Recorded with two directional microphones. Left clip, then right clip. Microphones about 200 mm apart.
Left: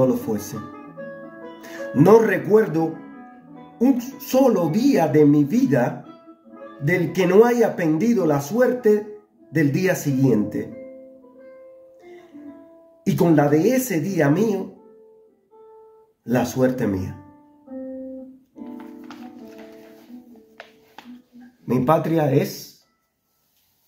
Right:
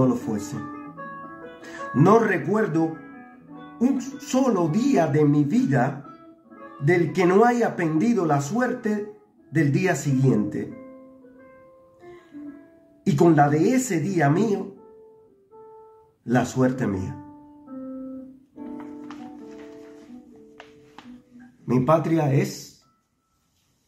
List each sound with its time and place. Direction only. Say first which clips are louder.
0.0 s speech: left 4 dB; 15° right (ahead or behind)
1.7 s speech: left 4 dB; 10° right (ahead or behind)
13.1 s speech: left 1 dB; 15° right (ahead or behind)
16.3 s speech: left 2 dB; 15° right (ahead or behind)
21.6 s speech: left 1 dB; 15° right (ahead or behind)